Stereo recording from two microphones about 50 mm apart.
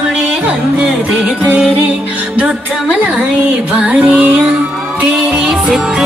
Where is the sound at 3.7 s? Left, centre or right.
Right.